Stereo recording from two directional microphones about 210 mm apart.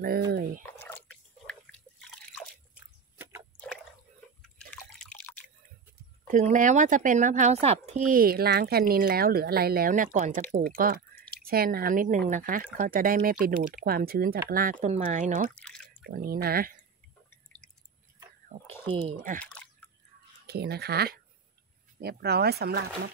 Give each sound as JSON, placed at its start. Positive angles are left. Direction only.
{"t": 0.0, "sound": "speech", "side_deg": -45}
{"t": 0.7, "sound": "drip", "side_deg": 10}
{"t": 3.2, "sound": "a sound", "side_deg": -15}
{"t": 4.9, "sound": "drip", "side_deg": 5}
{"t": 6.2, "sound": "speech", "side_deg": -35}
{"t": 15.5, "sound": "drip", "side_deg": 5}
{"t": 16.1, "sound": "speech", "side_deg": -45}
{"t": 17.3, "sound": "drip", "side_deg": 5}
{"t": 20.4, "sound": "speech", "side_deg": -50}